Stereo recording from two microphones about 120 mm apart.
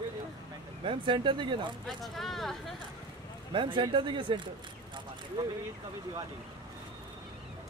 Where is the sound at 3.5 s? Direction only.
45° right (ahead or behind).